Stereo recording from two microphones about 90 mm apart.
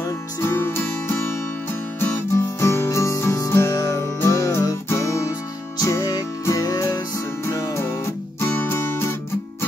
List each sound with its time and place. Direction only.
0.4 s music: 25° left (ahead or behind)
2.3 s music: 30° left (ahead or behind)